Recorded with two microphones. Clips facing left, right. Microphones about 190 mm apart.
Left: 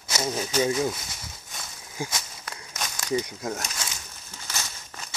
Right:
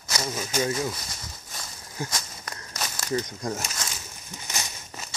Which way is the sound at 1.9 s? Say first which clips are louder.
Even; 5° left (ahead or behind).